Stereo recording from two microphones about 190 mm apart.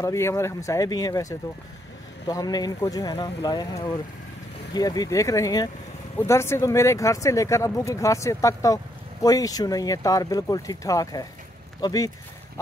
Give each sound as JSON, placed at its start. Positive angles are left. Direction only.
{"t": 0.0, "sound": "speech", "side_deg": 15}